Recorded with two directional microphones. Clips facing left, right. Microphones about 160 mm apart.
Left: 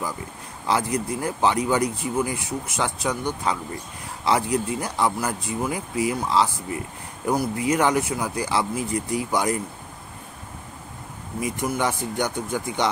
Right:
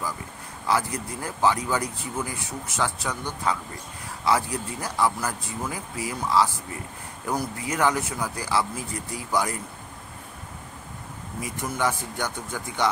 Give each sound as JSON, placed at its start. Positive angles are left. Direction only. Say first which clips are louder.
{"t": 0.7, "sound": "speech", "louder": "left 3 dB", "side_deg": 20}
{"t": 11.4, "sound": "speech", "louder": "left 3 dB", "side_deg": 15}